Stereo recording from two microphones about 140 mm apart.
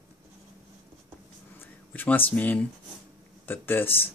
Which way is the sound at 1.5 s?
15° left (ahead or behind).